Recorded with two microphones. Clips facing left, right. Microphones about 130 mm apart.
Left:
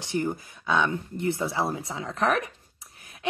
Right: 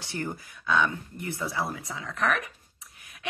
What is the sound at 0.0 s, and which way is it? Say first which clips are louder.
Speech: left 6 dB; 20° left (ahead or behind).